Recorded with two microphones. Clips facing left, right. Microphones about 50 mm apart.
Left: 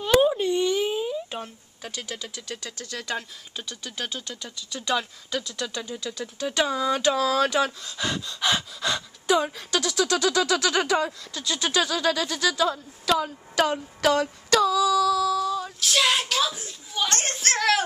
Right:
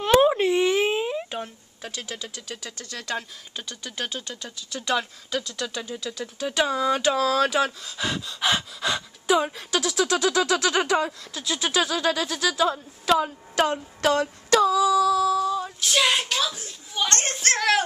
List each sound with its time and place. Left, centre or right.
0.2 s a sound: right
1.3 s speech: centre
2.8 s speech: centre
3.2 s speech: centre
14.0 s a sound: centre
14.6 s female singing: centre
16.9 s speech: centre